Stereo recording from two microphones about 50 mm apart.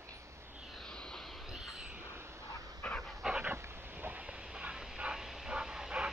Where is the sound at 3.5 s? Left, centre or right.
Right.